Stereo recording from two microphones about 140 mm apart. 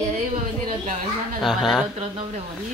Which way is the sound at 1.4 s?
Centre (ahead or behind).